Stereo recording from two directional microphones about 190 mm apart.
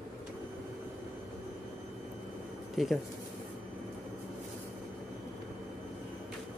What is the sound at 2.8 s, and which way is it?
Speech, centre (ahead or behind).